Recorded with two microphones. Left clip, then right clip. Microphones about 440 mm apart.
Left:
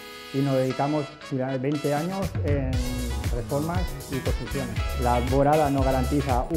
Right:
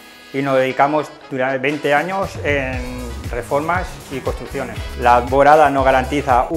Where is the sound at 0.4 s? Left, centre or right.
Centre.